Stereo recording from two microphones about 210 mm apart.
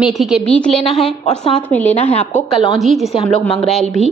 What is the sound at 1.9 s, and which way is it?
Speech, 30° left (ahead or behind).